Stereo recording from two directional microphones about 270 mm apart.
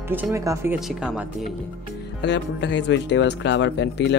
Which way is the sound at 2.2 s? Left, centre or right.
Left.